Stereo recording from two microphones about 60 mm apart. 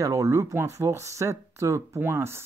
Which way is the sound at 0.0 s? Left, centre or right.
Right.